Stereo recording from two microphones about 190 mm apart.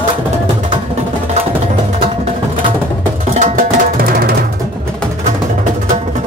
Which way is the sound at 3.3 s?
40° right (ahead or behind).